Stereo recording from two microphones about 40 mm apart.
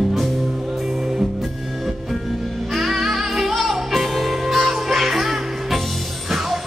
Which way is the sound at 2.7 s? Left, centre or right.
Centre.